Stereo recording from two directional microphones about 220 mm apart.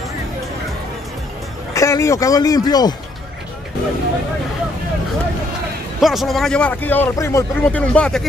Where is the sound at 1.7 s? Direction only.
15° left (ahead or behind).